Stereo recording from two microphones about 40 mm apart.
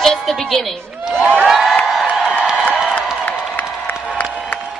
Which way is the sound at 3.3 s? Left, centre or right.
Left.